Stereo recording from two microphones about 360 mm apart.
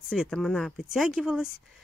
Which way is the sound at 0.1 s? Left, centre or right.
Centre.